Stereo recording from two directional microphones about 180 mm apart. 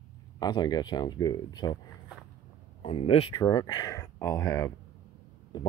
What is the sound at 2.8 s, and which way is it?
Speech, 30° left (ahead or behind).